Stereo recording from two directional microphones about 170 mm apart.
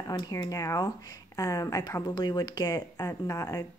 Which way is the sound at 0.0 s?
20° left (ahead or behind).